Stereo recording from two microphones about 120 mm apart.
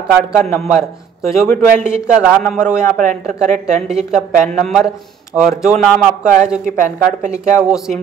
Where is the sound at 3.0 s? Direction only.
90° right.